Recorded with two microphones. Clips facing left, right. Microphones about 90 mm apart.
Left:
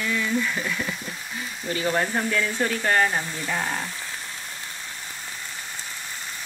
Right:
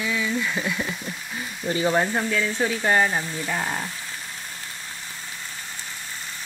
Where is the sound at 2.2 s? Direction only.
Centre (ahead or behind).